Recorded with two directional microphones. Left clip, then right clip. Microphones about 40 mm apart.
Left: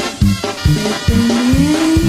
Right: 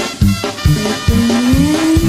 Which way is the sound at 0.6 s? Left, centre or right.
Left.